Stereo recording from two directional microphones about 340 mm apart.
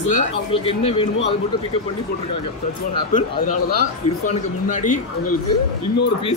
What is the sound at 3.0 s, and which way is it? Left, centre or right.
Speech, left.